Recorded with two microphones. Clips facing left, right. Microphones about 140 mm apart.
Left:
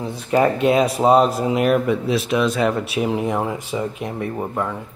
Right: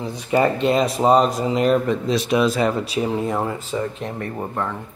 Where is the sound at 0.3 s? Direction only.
5° left (ahead or behind).